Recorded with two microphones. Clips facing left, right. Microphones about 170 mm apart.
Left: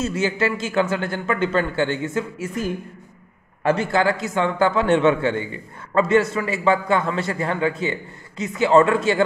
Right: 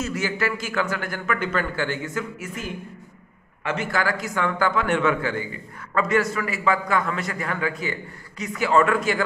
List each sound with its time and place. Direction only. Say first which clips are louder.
0.0 s a man's voice: left 4 dB; 25° left (ahead or behind)